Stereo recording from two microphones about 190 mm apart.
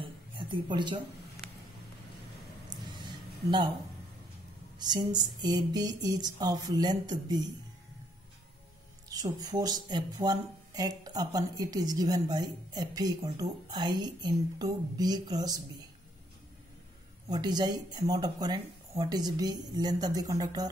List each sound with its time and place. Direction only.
0.0 s a sound: 25° right (ahead or behind)
4.7 s speech: 20° right (ahead or behind)
9.1 s speech: 20° right (ahead or behind)
17.3 s speech: 20° right (ahead or behind)